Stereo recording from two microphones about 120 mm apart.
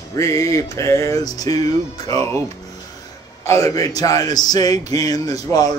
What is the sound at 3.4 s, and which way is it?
Speech, 25° left (ahead or behind).